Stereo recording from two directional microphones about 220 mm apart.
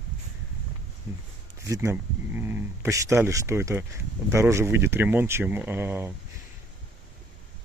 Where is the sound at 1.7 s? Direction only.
15° right (ahead or behind).